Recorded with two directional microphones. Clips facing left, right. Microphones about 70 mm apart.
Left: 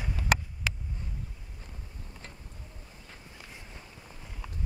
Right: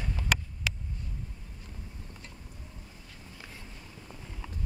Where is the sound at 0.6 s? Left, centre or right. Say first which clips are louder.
Left 1 dB; left.